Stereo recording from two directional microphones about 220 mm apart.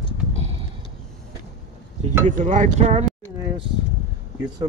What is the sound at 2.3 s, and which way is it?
Speech, 35° right (ahead or behind).